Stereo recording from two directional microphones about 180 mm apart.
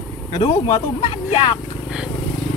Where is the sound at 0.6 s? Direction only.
25° left (ahead or behind).